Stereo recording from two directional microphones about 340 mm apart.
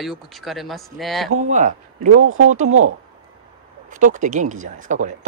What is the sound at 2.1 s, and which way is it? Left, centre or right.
Speech, right.